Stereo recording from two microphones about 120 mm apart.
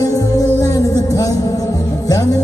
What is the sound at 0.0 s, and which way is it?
Music, 30° left (ahead or behind).